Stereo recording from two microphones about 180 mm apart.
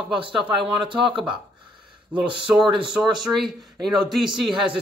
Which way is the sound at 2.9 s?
Centre (ahead or behind).